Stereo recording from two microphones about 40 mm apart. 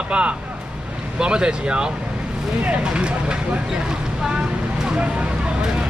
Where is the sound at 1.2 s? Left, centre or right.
Right.